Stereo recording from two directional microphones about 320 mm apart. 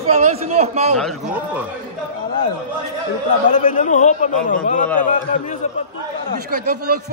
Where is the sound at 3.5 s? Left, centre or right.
Left.